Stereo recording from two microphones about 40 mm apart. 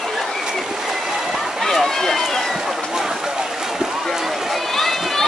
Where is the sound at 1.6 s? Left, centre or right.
Centre.